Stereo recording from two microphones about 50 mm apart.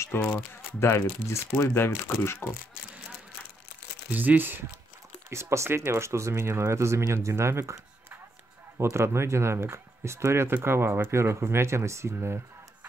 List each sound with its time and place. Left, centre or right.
0.1 s speech: left
0.7 s speech: left
4.1 s speech: right
5.3 s speech: right
8.9 s speech: right